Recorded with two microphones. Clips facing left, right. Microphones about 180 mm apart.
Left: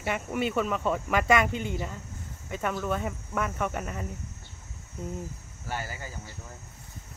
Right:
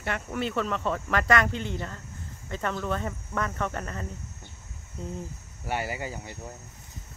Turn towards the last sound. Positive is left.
turn(degrees=-65)  # may be behind; listen again after turning